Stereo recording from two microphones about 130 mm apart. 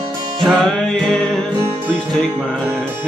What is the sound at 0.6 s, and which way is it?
Music, 5° left (ahead or behind).